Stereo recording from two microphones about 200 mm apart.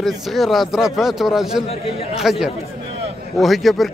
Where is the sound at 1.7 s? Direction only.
30° left (ahead or behind).